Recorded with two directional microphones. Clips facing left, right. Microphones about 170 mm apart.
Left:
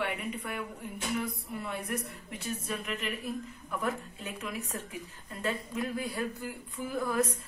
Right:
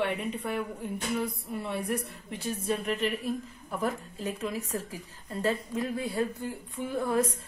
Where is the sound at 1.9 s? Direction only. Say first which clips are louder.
Right 4 dB; 30° right (ahead or behind).